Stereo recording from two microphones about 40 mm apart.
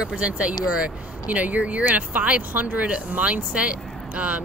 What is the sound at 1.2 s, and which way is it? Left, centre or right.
Speech, right.